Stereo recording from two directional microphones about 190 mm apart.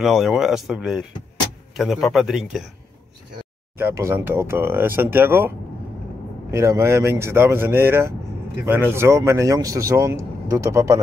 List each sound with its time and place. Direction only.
0.0 s speech: centre (ahead or behind)
3.7 s speech: 15° right (ahead or behind)
6.5 s speech: 15° right (ahead or behind)